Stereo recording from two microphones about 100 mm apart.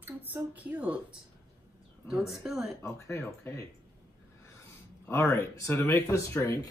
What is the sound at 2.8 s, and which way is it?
Speech, 30° left (ahead or behind).